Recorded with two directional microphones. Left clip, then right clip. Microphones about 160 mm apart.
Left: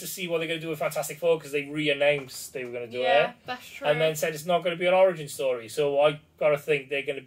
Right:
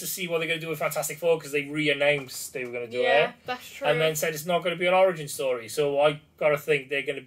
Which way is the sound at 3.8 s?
20° right (ahead or behind).